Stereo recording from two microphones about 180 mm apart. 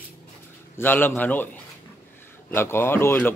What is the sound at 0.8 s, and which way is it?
Speech, 10° left (ahead or behind).